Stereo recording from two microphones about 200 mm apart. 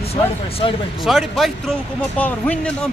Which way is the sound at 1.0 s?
Centre (ahead or behind).